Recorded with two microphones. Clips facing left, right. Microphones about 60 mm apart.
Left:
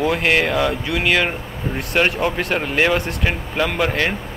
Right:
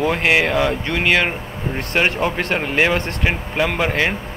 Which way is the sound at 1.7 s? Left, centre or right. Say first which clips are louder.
Even; centre.